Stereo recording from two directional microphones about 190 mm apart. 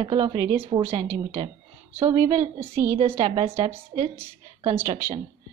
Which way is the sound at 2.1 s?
35° right (ahead or behind).